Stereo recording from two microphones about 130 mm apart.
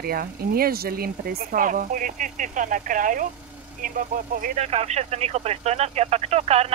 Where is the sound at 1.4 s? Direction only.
90° right.